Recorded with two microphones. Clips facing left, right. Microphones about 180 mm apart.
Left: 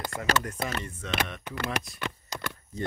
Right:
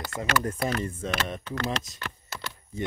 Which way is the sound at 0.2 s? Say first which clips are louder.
Right 2 dB; 25° right (ahead or behind).